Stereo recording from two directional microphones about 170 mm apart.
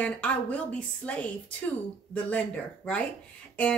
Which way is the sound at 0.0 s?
10° left (ahead or behind).